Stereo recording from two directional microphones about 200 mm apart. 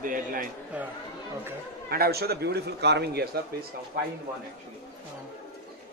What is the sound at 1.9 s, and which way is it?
Speech, 50° right (ahead or behind).